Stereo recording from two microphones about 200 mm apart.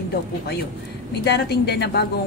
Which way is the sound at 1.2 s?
55° left (ahead or behind).